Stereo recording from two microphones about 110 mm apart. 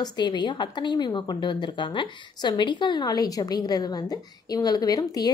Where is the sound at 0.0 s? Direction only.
40° left (ahead or behind).